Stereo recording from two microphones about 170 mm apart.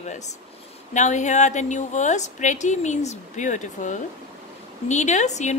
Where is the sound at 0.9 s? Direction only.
45° left (ahead or behind).